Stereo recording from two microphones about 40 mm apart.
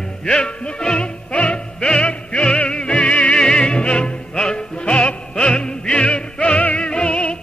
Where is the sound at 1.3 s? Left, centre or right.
Left.